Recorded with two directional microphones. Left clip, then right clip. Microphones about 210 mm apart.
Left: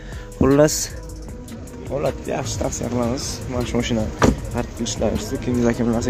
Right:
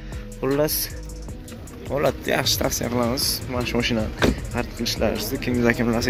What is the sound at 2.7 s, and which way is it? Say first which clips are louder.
Speech: even; centre (ahead or behind).